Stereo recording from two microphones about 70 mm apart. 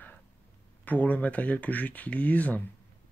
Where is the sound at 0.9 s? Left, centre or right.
Left.